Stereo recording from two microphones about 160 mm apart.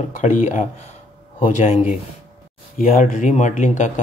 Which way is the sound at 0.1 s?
55° left (ahead or behind).